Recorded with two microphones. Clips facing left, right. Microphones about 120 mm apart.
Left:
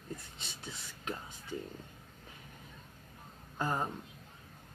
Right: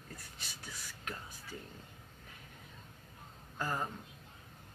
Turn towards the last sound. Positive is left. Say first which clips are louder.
# left 3 dB
turn(degrees=25)  # may be behind; listen again after turning